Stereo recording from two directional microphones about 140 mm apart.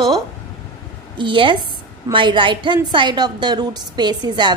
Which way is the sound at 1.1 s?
35° right (ahead or behind).